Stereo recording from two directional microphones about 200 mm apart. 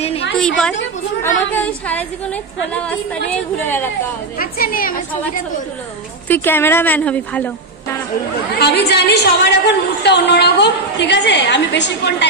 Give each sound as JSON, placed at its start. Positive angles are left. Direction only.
{"t": 0.4, "sound": "a woman's voice", "side_deg": 5}
{"t": 4.4, "sound": "a woman's voice", "side_deg": 45}
{"t": 6.2, "sound": "a woman's voice", "side_deg": 10}
{"t": 8.5, "sound": "a woman's voice", "side_deg": 55}